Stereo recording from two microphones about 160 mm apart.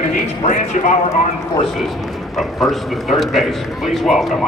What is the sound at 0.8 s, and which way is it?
Speech, 50° left (ahead or behind).